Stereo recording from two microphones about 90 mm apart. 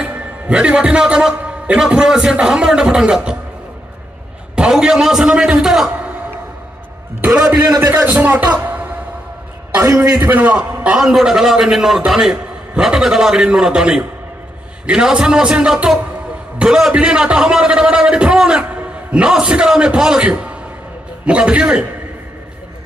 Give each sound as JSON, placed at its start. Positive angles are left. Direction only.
{"t": 0.0, "sound": "a man's voice", "side_deg": -15}
{"t": 4.6, "sound": "a man's voice", "side_deg": -10}
{"t": 7.2, "sound": "a man's voice", "side_deg": -10}
{"t": 7.6, "sound": "a man's voice", "side_deg": -40}
{"t": 8.0, "sound": "speech", "side_deg": -20}
{"t": 9.8, "sound": "a man's voice", "side_deg": -30}
{"t": 10.3, "sound": "a man's voice", "side_deg": -15}